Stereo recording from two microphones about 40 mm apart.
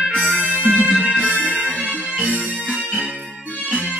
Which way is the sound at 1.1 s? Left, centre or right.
Right.